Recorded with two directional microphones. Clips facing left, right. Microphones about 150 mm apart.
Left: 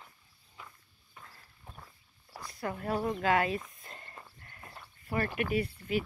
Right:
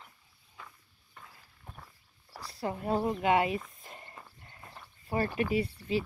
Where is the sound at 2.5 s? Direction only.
25° right (ahead or behind).